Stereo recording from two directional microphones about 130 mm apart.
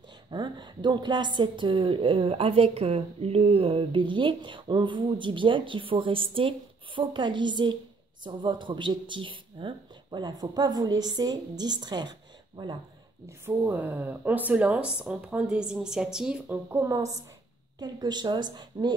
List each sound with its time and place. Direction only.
0.3 s a woman's voice: 35° right (ahead or behind); by 16.5 s 5° right (ahead or behind)
16.7 s a woman's voice: 20° right (ahead or behind)